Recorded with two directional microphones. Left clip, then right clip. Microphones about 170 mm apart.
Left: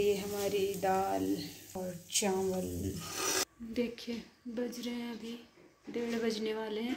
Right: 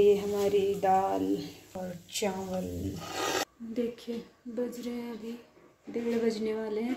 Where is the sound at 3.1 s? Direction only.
30° right (ahead or behind).